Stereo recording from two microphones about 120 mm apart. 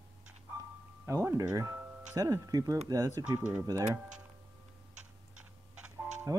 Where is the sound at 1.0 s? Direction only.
20° right (ahead or behind).